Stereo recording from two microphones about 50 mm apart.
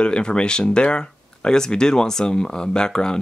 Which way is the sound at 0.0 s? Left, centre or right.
Centre.